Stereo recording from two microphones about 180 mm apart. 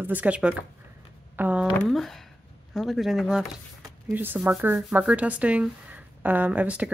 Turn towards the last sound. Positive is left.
turn(degrees=-10)  # may be behind; listen again after turning